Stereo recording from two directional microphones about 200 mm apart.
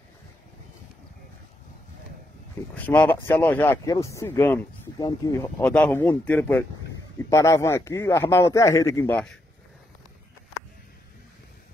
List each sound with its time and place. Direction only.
2.7 s speech: 10° left (ahead or behind)